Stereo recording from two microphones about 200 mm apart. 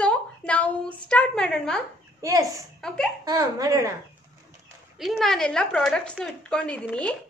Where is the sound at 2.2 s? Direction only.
15° right (ahead or behind).